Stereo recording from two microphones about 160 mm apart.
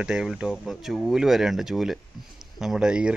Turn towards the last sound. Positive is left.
turn(degrees=-5)  # may be behind; listen again after turning